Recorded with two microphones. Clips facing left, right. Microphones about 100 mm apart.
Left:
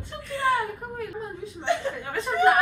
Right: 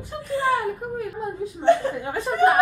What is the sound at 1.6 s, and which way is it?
Speech, 40° right (ahead or behind).